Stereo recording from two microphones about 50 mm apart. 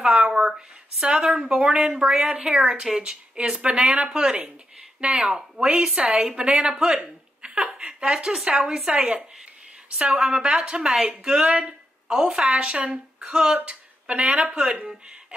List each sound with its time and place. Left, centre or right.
0.0 s a woman's voice: centre
13.7 s a sound: right
14.6 s a woman's voice: right